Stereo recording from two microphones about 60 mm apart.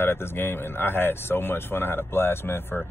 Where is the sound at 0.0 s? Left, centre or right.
Left.